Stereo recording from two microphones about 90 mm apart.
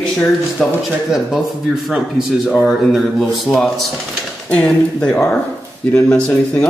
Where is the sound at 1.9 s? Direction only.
5° right (ahead or behind); by 5.1 s 10° left (ahead or behind).